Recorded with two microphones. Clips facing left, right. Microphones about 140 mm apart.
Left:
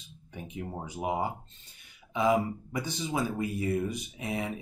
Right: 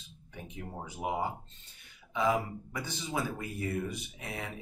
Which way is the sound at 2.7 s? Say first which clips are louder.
Left 2 dB; 15° left (ahead or behind).